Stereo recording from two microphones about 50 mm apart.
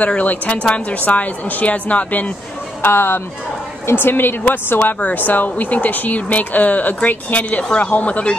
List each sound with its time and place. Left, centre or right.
0.0 s a woman's voice: left
2.8 s a woman's voice: left